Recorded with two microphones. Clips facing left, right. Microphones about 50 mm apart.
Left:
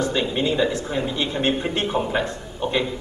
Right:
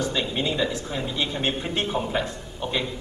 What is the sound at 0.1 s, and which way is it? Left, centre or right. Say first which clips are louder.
A man's voice: left 4 dB; centre.